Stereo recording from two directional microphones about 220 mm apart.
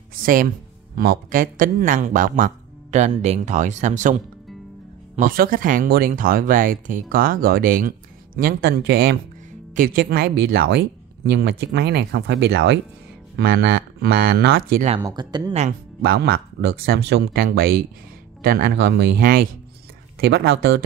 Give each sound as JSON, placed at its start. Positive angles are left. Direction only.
{"t": 0.1, "sound": "speech", "side_deg": -40}
{"t": 15.0, "sound": "speech", "side_deg": -20}
{"t": 16.0, "sound": "speech", "side_deg": -50}